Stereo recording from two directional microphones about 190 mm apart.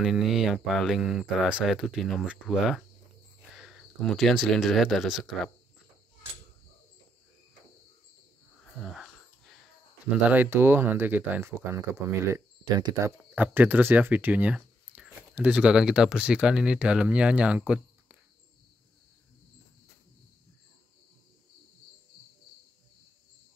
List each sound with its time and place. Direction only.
0.0 s speech: centre (ahead or behind)
8.8 s a sound: centre (ahead or behind)
10.3 s speech: 10° right (ahead or behind)
13.2 s speech: 10° right (ahead or behind)